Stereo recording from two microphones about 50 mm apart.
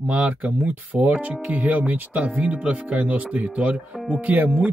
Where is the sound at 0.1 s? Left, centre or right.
Right.